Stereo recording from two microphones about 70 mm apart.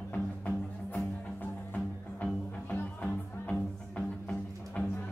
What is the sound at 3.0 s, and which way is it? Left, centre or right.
Music, centre.